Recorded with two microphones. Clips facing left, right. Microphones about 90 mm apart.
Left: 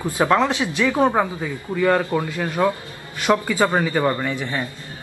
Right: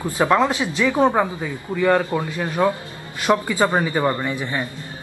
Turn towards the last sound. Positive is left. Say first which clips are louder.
# even
turn(degrees=-15)  # may be behind; listen again after turning